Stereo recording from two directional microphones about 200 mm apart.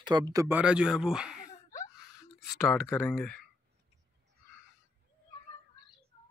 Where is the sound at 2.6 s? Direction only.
15° left (ahead or behind).